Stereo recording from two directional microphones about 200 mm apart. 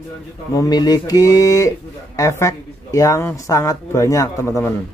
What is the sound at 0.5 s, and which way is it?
A man's voice, 20° left (ahead or behind).